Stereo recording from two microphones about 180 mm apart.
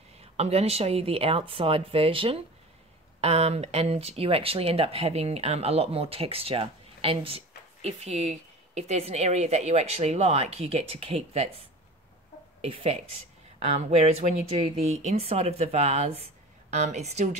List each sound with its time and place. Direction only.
0.4 s speech: 35° right (ahead or behind)
12.6 s speech: 30° right (ahead or behind)